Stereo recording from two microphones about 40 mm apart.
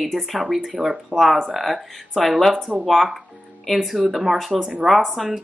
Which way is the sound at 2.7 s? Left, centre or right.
Centre.